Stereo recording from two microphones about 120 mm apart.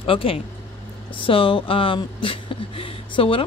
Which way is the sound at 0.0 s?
50° left (ahead or behind).